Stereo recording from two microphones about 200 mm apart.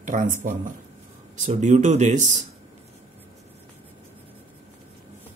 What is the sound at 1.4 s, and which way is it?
Speech, 35° right (ahead or behind).